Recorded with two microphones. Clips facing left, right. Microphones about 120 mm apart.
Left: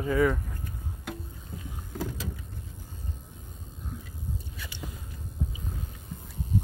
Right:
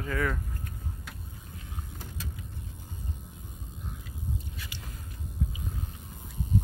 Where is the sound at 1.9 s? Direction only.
80° left.